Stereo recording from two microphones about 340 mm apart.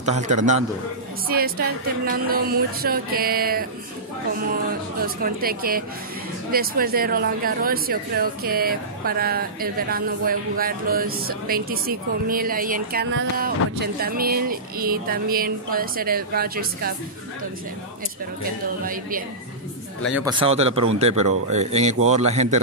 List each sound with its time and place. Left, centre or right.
0.0 s speech: right
2.0 s speech: right
5.0 s speech: right
18.9 s speech: right
20.2 s speech: centre